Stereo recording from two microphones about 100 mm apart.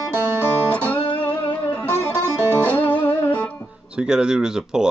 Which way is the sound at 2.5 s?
15° left (ahead or behind).